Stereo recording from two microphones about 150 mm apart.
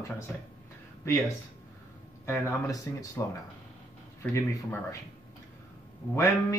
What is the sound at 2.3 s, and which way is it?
Music, 20° left (ahead or behind).